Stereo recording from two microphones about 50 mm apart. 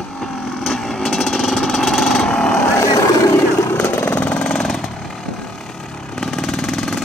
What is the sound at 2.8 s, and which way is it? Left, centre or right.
Vehicle, left.